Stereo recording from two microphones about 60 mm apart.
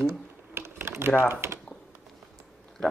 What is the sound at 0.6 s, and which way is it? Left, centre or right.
Typing, right.